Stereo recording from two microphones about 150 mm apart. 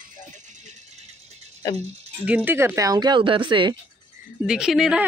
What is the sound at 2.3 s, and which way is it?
Speech, 10° right (ahead or behind).